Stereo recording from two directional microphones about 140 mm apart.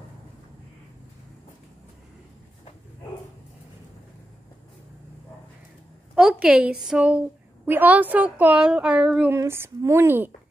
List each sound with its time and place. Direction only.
6.1 s a woman's voice: 5° right (ahead or behind)
9.3 s a woman's voice: 20° right (ahead or behind)